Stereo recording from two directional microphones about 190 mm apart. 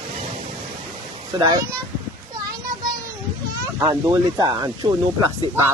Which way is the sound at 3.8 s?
20° right (ahead or behind).